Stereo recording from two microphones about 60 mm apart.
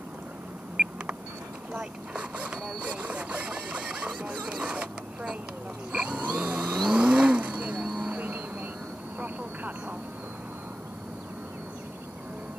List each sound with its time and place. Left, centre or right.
0.8 s a sound: right
1.7 s speech: right
2.8 s a sound: right
4.1 s speech: centre
5.9 s a sound: centre
6.4 s vehicle: centre
7.0 s vehicle: centre
8.1 s music: right
9.2 s vehicle: right